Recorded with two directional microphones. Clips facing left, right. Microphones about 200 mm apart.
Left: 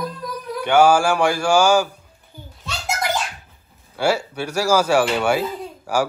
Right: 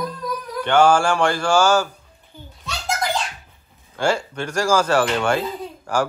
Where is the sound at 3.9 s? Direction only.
10° left (ahead or behind).